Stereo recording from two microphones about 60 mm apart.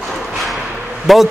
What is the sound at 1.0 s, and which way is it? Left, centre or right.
Speech, centre.